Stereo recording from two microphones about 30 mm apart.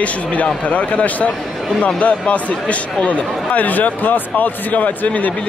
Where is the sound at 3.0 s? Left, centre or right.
Left.